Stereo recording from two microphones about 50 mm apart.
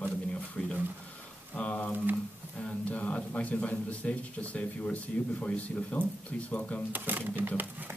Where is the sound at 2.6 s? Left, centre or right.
Left.